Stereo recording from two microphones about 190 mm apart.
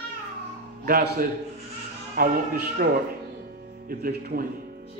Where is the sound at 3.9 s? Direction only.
50° right (ahead or behind).